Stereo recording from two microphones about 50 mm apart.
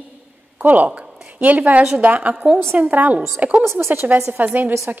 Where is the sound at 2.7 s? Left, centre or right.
Right.